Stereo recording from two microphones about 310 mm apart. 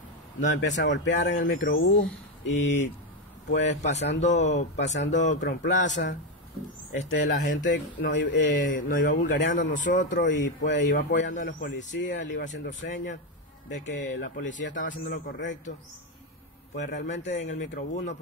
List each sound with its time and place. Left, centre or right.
0.5 s speech: left
2.5 s speech: left
3.5 s speech: left
4.2 s speech: left
4.9 s speech: left
8.4 s speech: left
16.7 s speech: left